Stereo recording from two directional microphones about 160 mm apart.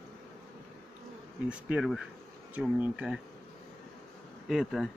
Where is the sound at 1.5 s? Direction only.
5° right (ahead or behind).